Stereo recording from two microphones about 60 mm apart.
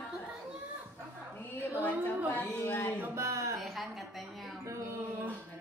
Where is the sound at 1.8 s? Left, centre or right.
Left.